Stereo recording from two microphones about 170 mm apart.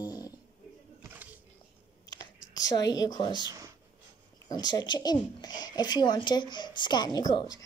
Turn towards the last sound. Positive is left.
turn(degrees=20)  # may be behind; listen again after turning